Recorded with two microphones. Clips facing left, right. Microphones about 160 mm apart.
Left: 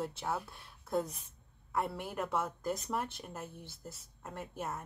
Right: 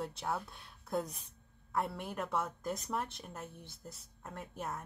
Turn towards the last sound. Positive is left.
turn(degrees=0)  # may be behind; listen again after turning